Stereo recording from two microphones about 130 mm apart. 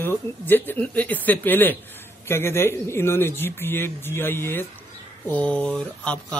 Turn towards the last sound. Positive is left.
turn(degrees=10)  # may be behind; listen again after turning